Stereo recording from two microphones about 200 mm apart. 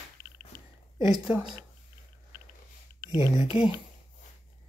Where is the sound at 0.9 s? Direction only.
20° right (ahead or behind).